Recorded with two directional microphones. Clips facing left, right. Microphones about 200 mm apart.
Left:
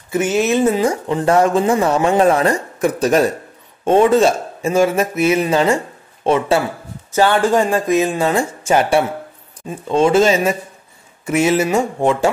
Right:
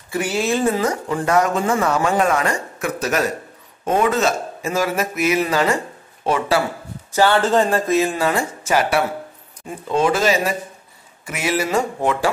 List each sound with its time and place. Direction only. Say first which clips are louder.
0.1 s a man's voice: left 5 dB; 20° left (ahead or behind)
7.2 s a man's voice: left 2 dB; 15° left (ahead or behind)